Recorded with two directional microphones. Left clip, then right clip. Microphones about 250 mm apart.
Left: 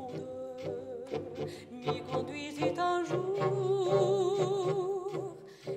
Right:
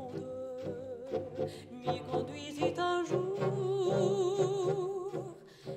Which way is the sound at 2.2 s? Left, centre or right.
Centre.